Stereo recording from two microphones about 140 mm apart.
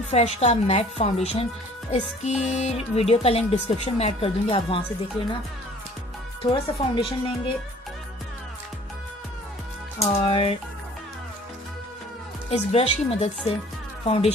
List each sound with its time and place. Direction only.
0.1 s speech: 50° left (ahead or behind)
6.4 s speech: 35° left (ahead or behind)
9.9 s speech: 45° left (ahead or behind)
12.4 s speech: 45° left (ahead or behind)